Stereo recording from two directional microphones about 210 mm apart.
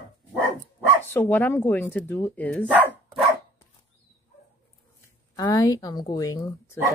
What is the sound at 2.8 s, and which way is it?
Dog, 10° left (ahead or behind).